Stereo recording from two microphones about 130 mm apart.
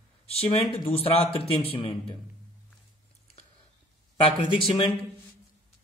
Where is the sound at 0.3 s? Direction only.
50° left (ahead or behind).